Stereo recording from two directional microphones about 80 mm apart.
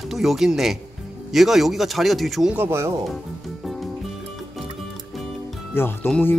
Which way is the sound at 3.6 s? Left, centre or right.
Centre.